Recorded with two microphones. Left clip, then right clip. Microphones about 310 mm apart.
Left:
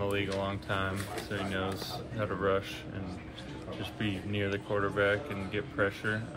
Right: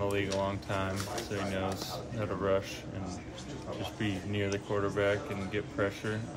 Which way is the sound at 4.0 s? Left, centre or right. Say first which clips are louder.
Left 1 dB; centre.